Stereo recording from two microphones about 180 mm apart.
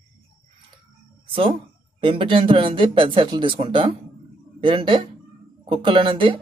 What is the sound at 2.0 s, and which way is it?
Speech, 30° right (ahead or behind).